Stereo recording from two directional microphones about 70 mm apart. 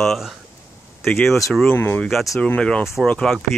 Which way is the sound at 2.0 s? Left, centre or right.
Centre.